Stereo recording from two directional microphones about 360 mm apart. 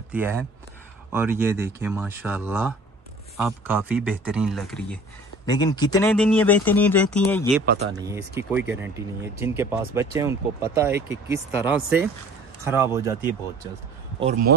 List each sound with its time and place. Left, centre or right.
0.1 s speech: centre
7.9 s speech: centre